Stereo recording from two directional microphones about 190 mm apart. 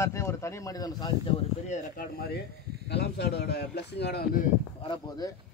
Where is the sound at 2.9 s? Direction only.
60° left (ahead or behind).